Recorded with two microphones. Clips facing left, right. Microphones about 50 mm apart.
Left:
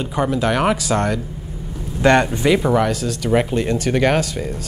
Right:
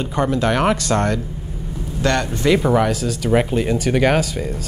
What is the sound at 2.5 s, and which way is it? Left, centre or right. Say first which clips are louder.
Speech: right 2 dB; centre.